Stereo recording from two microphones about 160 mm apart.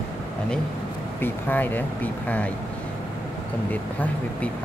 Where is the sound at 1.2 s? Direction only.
10° left (ahead or behind).